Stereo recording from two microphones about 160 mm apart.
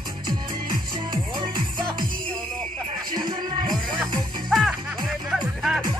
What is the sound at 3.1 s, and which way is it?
Music, 25° right (ahead or behind).